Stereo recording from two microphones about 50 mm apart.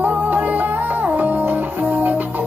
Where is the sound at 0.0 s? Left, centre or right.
Right.